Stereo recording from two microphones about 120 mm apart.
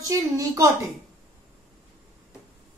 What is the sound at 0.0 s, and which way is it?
Speech, 30° right (ahead or behind).